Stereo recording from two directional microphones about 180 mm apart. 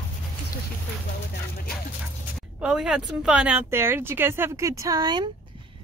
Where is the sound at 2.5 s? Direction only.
5° right (ahead or behind).